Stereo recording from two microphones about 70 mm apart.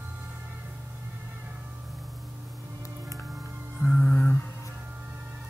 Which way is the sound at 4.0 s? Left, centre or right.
Left.